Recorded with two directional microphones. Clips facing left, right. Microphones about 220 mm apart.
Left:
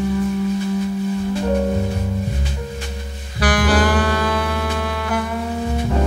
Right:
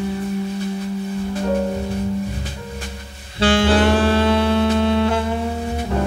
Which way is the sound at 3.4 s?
25° right (ahead or behind).